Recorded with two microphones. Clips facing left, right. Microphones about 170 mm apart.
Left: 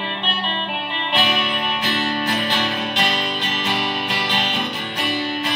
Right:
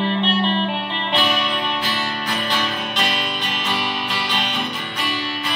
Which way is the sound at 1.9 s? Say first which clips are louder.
Left 3 dB; 55° left (ahead or behind).